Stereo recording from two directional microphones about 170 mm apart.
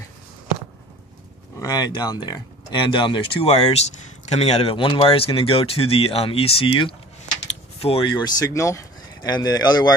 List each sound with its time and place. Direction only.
1.6 s speech: 25° left (ahead or behind)
7.4 s a sound: 35° left (ahead or behind)
8.2 s speech: 20° left (ahead or behind)